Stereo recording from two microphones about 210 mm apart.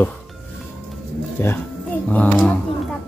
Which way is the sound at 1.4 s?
10° left (ahead or behind).